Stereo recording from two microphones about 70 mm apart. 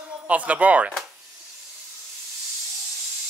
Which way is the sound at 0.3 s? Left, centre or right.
Centre.